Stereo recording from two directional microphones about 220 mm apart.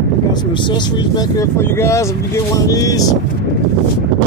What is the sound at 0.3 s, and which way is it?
Speech, 20° left (ahead or behind).